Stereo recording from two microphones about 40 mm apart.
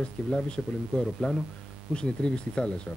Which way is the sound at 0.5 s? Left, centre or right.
Centre.